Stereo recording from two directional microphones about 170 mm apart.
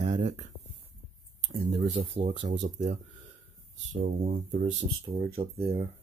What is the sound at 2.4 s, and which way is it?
Speech, 90° right.